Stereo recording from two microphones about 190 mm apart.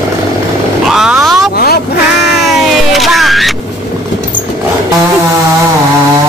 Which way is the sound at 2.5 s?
Centre (ahead or behind).